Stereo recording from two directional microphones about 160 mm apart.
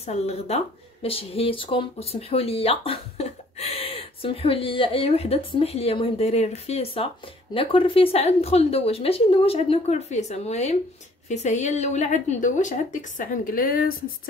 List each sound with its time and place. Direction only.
0.0 s a woman's voice: 40° left (ahead or behind); by 13.9 s 65° left (ahead or behind)